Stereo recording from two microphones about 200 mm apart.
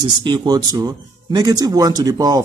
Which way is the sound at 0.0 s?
25° right (ahead or behind).